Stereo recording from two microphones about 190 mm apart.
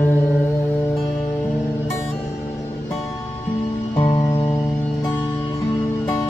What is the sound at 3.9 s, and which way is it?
Music, 20° left (ahead or behind).